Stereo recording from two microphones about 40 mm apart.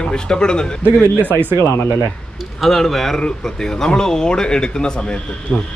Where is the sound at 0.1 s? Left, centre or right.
Left.